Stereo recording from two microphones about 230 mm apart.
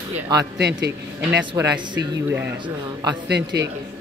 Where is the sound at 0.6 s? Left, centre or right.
Right.